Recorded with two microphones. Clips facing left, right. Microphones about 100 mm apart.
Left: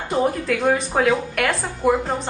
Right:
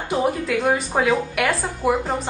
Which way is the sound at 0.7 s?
10° right (ahead or behind).